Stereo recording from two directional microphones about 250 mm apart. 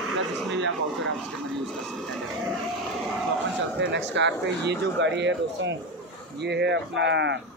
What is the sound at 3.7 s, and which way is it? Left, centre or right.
Speech, right.